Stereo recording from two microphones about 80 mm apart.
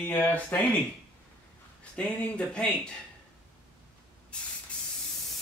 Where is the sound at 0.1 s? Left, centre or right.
Left.